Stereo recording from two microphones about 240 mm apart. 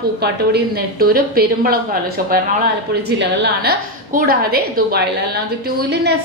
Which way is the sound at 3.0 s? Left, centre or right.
Right.